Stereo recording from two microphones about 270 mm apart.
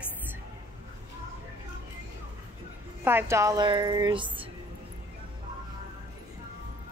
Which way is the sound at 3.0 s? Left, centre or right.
Centre.